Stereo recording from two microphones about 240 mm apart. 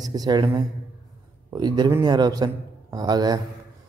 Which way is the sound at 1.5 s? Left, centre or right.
Centre.